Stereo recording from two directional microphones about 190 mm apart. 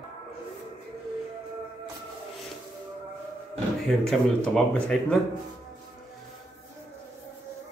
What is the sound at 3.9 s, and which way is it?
Speech, 5° left (ahead or behind).